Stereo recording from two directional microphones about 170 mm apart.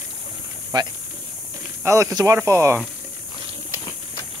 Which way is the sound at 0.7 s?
25° right (ahead or behind).